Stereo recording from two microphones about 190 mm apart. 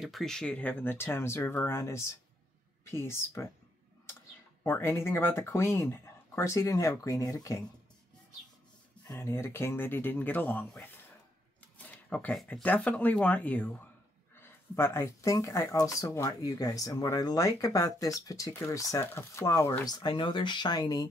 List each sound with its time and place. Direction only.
0.0 s speech: centre (ahead or behind)
4.6 s speech: 15° left (ahead or behind)
9.0 s speech: 15° left (ahead or behind)